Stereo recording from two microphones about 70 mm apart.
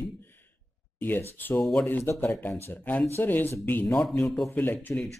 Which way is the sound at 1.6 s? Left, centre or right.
Centre.